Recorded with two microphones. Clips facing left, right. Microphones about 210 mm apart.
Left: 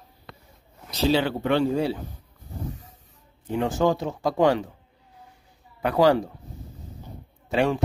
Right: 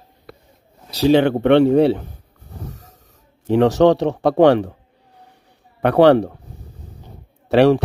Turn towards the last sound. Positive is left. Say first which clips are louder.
# right 10 dB
turn(degrees=-70)  # may be behind; listen again after turning